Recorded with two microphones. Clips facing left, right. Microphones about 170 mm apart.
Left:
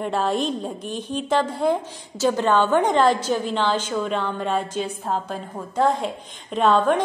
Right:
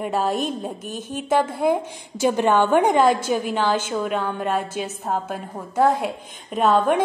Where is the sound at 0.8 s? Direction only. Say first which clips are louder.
Left 2 dB; 45° right (ahead or behind).